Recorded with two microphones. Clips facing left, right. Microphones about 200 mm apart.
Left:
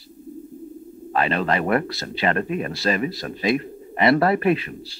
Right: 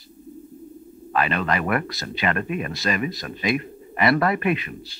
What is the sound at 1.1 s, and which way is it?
Speech, 30° left (ahead or behind).